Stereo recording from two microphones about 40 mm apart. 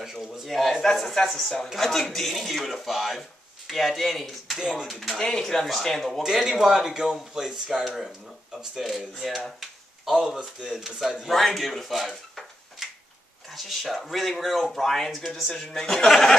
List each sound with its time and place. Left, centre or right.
0.0 s speech: centre
0.5 s speech: centre
4.6 s speech: centre
4.8 s speech: centre
5.2 s speech: centre
6.2 s speech: centre
9.6 s a sound: centre
10.4 s speech: centre
11.3 s a sound: centre
13.5 s speech: centre
15.5 s speech: centre